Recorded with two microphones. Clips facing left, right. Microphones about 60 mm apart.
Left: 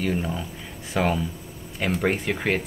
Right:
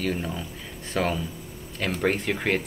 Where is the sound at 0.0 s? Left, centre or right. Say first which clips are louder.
Left 2 dB; centre.